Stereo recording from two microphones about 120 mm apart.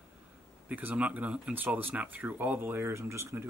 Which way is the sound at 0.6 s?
15° right (ahead or behind).